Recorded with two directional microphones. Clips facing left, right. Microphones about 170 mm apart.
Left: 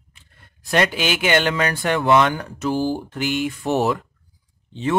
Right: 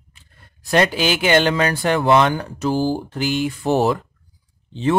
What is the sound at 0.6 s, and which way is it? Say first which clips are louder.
A man's voice: right 3 dB; 35° right (ahead or behind).